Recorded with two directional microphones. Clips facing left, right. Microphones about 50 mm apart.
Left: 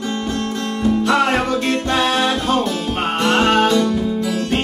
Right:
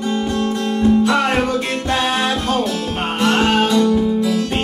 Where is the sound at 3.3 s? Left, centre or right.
Left.